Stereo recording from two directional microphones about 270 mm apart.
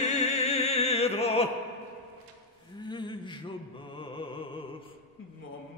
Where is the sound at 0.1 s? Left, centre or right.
Left.